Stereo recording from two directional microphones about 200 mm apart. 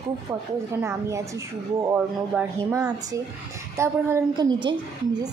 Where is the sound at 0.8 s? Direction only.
15° right (ahead or behind).